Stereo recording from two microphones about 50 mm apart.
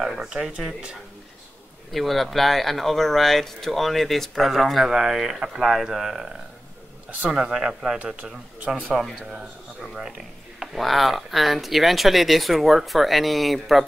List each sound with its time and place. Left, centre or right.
0.2 s speech: centre
1.9 s speech: centre
7.1 s speech: right
7.3 s speech: centre
8.5 s speech: right
10.6 s speech: centre